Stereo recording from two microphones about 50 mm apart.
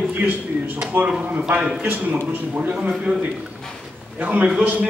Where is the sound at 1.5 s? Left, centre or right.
Centre.